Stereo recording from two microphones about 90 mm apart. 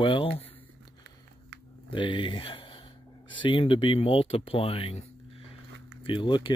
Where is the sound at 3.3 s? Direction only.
65° left (ahead or behind); by 4.9 s 90° left.